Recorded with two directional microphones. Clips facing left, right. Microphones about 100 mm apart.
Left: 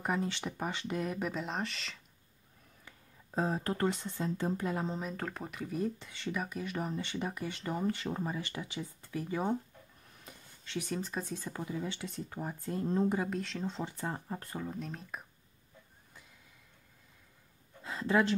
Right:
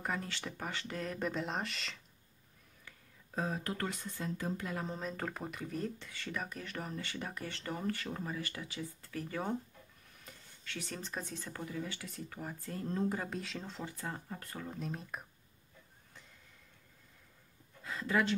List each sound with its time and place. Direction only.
0.0 s speech: 20° left (ahead or behind)
1.3 s speech: centre (ahead or behind)
3.3 s speech: 30° left (ahead or behind)
5.1 s speech: centre (ahead or behind)
5.9 s speech: 20° left (ahead or behind)
6.3 s speech: 10° left (ahead or behind); by 13.2 s 25° left (ahead or behind)
13.2 s speech: centre (ahead or behind)
13.7 s speech: 25° left (ahead or behind)
14.6 s speech: centre (ahead or behind)
17.8 s a sound: 25° left (ahead or behind)